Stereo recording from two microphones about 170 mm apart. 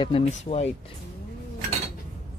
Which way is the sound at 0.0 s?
30° left (ahead or behind).